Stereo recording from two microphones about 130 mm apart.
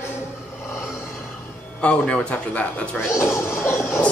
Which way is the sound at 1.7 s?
10° left (ahead or behind).